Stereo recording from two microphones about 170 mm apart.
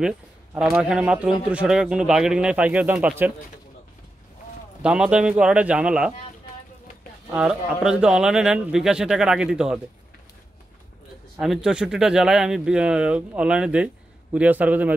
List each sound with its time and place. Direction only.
0.6 s speech: 5° right (ahead or behind)
4.8 s speech: 5° right (ahead or behind)
7.3 s speech: 5° right (ahead or behind)
11.3 s a man's voice: centre (ahead or behind)